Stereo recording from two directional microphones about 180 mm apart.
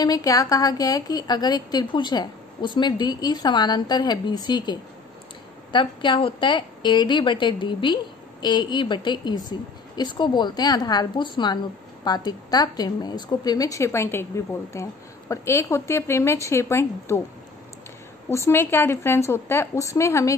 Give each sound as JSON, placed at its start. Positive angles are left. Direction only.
{"t": 0.0, "sound": "a woman's voice", "side_deg": 20}
{"t": 18.3, "sound": "a woman's voice", "side_deg": 15}